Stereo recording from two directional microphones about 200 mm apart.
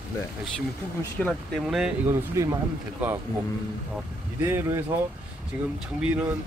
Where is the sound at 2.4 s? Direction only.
15° right (ahead or behind).